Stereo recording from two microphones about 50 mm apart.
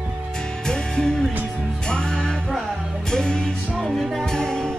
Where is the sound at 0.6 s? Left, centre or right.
Centre.